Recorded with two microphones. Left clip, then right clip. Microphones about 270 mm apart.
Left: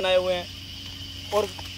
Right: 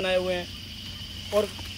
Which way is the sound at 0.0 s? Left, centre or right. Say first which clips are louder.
Left 3 dB; left.